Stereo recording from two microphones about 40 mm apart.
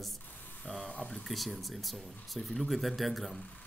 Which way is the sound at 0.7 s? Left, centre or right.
Left.